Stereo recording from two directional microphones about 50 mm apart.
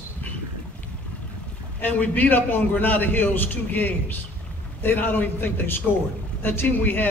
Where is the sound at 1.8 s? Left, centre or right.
Left.